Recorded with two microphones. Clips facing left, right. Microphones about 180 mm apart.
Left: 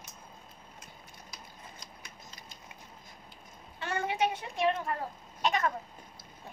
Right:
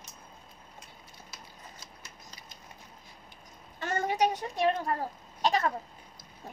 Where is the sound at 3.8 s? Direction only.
40° right (ahead or behind).